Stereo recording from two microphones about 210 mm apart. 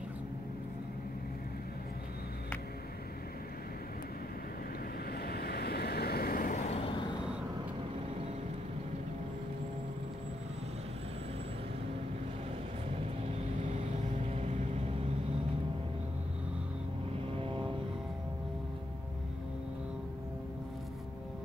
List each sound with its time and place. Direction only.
5.2 s vehicle: 50° left (ahead or behind); by 6.9 s 30° left (ahead or behind)
14.1 s vehicle: 35° right (ahead or behind)
17.4 s vehicle: 25° right (ahead or behind)